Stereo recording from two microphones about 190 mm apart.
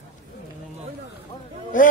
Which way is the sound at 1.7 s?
45° left (ahead or behind).